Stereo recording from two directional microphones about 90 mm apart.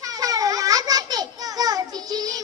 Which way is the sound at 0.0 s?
40° right (ahead or behind).